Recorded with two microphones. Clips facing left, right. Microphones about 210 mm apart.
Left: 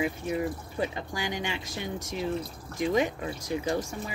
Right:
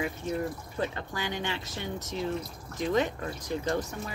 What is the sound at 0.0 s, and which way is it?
Speech, 10° left (ahead or behind).